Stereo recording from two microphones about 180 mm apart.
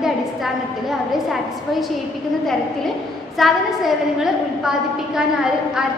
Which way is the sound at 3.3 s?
Centre (ahead or behind).